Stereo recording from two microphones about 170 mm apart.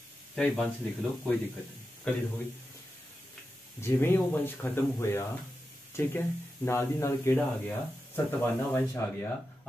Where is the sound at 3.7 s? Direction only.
15° left (ahead or behind).